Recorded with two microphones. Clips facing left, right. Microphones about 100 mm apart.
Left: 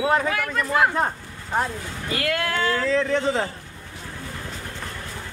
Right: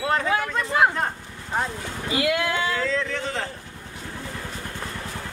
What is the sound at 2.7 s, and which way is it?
Speech, 20° left (ahead or behind).